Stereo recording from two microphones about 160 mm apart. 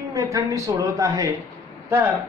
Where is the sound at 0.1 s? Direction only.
20° right (ahead or behind).